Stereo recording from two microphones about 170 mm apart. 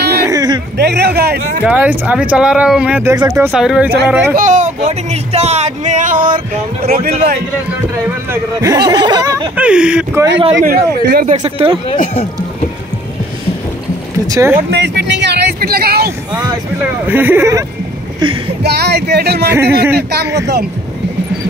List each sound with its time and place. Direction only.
0.2 s a sound: 20° right (ahead or behind)
0.7 s speech: 75° right (ahead or behind)
1.6 s speech: 10° right (ahead or behind)
4.4 s speech: 45° right (ahead or behind)
8.3 s speech: 20° right (ahead or behind)
9.6 s speech: 5° right (ahead or behind)
10.6 s speech: 60° right (ahead or behind)
11.4 s speech: 35° right (ahead or behind)
11.9 s speech: 50° left (ahead or behind)
14.2 s speech: 20° right (ahead or behind)
14.7 s a sound: 90° right; by 16.1 s 65° right (ahead or behind)
17.0 s speech: 10° right (ahead or behind)
18.2 s speech: 30° right (ahead or behind)
18.6 s speech: 75° right (ahead or behind)